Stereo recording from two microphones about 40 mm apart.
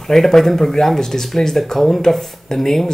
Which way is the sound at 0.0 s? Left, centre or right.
Centre.